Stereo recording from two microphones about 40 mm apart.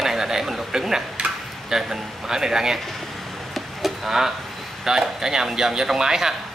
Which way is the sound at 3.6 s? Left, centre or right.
Centre.